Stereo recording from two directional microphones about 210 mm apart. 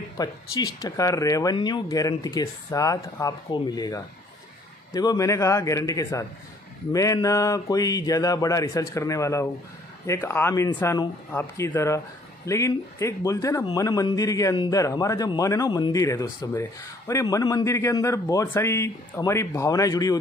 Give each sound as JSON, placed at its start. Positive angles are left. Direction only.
{"t": 0.2, "sound": "a man's voice", "side_deg": 20}